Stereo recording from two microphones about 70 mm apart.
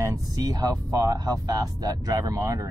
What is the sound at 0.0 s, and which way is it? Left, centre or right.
Speech, right.